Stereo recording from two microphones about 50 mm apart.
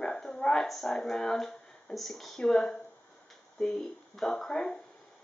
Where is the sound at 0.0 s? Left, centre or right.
Centre.